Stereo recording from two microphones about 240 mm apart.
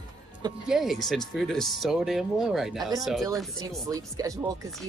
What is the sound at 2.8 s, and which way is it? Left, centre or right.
Speech, centre.